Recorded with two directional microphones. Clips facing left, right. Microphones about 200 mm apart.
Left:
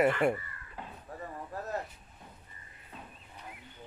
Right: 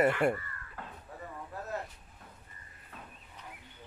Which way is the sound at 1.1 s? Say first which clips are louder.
Left 5 dB; 40° left (ahead or behind).